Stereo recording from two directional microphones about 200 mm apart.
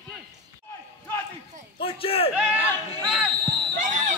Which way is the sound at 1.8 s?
25° left (ahead or behind).